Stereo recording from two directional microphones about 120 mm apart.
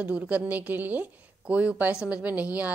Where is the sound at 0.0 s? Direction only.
10° right (ahead or behind).